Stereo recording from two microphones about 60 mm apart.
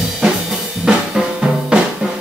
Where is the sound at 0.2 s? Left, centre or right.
Centre.